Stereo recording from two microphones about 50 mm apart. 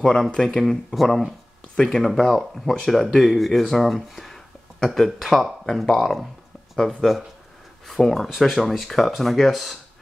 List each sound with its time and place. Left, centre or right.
0.0 s speech: centre